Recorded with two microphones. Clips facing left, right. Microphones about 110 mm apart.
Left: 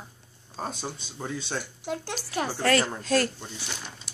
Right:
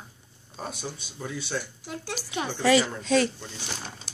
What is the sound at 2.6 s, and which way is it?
Speech, 5° right (ahead or behind).